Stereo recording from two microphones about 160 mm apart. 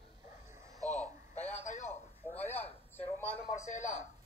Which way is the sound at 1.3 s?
45° left (ahead or behind).